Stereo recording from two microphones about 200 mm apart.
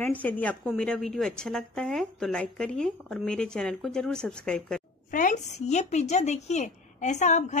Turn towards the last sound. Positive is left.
turn(degrees=35)  # may be behind; listen again after turning